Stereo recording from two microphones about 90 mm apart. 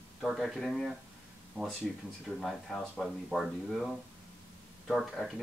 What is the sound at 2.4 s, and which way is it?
Speech, centre (ahead or behind).